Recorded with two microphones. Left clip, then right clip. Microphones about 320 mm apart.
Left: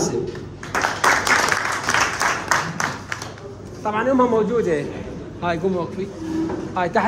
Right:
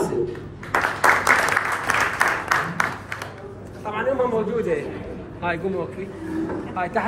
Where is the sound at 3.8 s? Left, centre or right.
Left.